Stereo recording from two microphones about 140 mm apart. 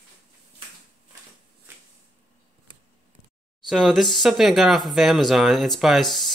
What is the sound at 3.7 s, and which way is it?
Speech, centre (ahead or behind).